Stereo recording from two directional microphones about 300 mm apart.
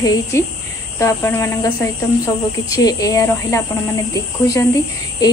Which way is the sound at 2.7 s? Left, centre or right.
Centre.